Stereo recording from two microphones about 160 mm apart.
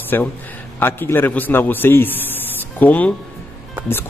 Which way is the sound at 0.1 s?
15° left (ahead or behind).